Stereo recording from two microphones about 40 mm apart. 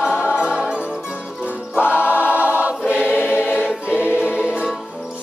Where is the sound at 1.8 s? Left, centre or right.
Left.